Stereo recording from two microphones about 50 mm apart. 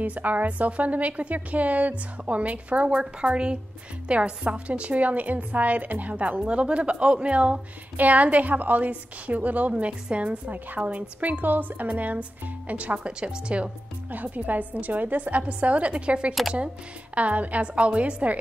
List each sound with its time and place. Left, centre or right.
0.0 s a woman's voice: right
14.1 s a woman's voice: right